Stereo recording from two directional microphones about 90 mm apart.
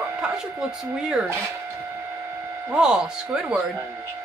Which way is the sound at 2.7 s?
10° right (ahead or behind).